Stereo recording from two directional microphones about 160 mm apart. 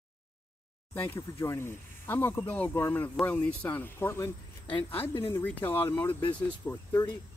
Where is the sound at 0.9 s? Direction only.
15° left (ahead or behind).